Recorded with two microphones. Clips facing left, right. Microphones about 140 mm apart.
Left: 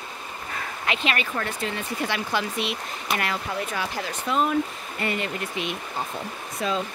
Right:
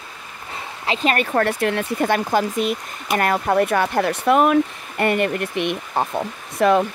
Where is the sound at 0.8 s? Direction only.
40° right (ahead or behind); by 6.9 s 65° right (ahead or behind).